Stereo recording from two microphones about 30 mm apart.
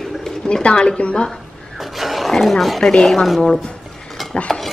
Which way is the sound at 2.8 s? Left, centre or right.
Left.